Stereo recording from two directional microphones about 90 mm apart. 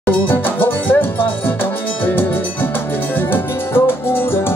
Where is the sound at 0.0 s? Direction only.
25° left (ahead or behind).